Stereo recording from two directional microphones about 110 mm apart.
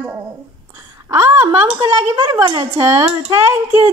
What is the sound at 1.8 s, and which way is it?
Speech, 35° right (ahead or behind).